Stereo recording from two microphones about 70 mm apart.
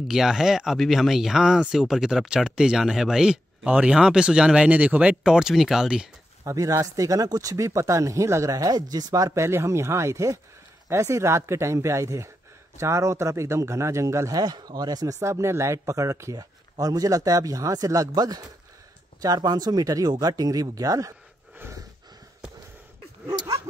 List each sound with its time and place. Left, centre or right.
0.1 s speech: centre
6.4 s speech: right
14.4 s speech: right
15.1 s speech: right
23.2 s speech: right